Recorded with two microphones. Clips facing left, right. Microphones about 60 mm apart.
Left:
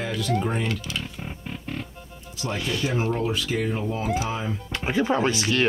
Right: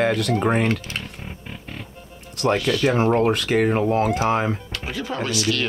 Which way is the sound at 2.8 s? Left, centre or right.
Right.